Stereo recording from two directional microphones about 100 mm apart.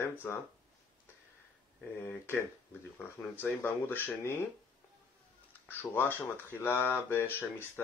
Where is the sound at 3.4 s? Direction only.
20° left (ahead or behind).